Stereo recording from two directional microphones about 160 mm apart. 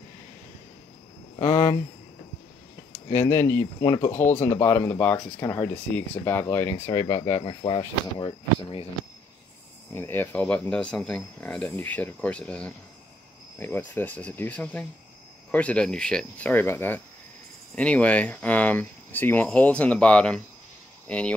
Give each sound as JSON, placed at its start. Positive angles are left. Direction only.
{"t": 3.1, "sound": "speech", "side_deg": 15}
{"t": 3.8, "sound": "speech", "side_deg": 25}
{"t": 4.1, "sound": "speech", "side_deg": 15}
{"t": 7.4, "sound": "speech", "side_deg": 30}
{"t": 9.9, "sound": "speech", "side_deg": 15}